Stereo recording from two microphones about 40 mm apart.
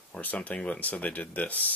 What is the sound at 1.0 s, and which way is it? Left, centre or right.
Speech, left.